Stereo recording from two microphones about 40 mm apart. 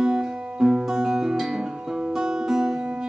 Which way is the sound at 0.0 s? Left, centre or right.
Centre.